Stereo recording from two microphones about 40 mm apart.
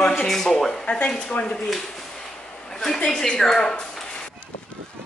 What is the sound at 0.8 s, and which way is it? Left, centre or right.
Speech, left.